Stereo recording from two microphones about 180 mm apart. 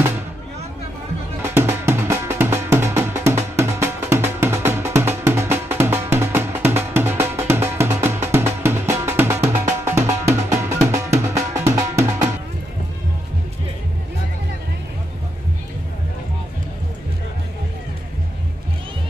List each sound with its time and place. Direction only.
1.5 s music: 15° right (ahead or behind)